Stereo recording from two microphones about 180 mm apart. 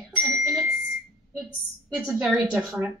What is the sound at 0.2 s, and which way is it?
Bicycle bell, 5° right (ahead or behind).